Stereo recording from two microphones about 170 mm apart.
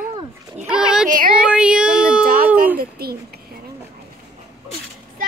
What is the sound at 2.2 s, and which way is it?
Music, 55° right (ahead or behind).